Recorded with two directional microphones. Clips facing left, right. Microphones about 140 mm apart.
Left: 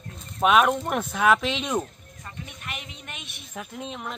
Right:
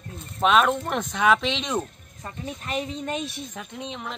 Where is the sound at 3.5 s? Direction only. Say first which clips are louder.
Even; 5° left (ahead or behind).